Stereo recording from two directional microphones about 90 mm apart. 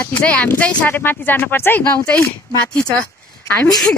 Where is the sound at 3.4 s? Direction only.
10° left (ahead or behind).